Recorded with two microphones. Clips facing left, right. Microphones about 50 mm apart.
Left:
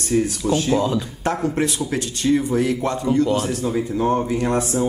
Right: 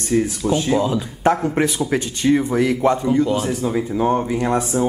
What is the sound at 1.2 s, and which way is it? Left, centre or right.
Speech, right.